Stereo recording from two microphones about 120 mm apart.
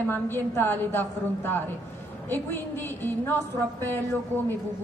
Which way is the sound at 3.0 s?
20° left (ahead or behind).